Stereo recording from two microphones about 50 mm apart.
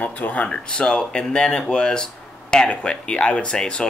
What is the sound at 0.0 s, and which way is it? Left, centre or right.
Speech, left.